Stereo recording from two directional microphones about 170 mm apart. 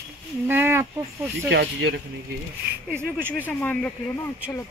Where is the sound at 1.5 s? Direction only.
90° right.